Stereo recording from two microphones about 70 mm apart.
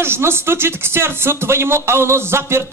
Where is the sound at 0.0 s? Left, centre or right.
Right.